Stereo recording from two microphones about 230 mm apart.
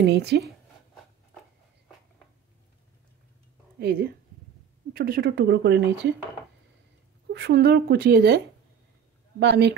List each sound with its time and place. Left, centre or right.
0.0 s speech: right
3.8 s speech: right
7.3 s speech: right
9.4 s speech: right